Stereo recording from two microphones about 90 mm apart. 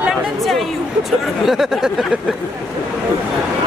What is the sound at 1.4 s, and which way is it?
Speech, 5° right (ahead or behind).